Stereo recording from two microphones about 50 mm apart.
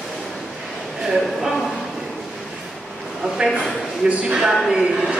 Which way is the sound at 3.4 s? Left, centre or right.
Right.